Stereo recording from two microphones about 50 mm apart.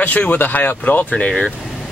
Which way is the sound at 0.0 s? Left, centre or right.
Left.